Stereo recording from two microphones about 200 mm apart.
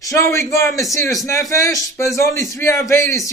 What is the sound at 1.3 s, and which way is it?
A man's voice, 15° left (ahead or behind).